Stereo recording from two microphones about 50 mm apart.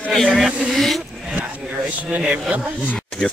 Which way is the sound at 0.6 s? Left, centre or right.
Centre.